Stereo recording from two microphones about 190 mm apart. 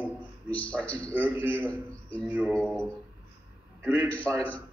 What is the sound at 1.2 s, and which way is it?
Speech, 10° right (ahead or behind).